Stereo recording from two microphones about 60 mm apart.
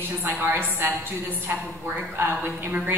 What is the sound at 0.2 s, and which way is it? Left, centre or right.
Speech, right.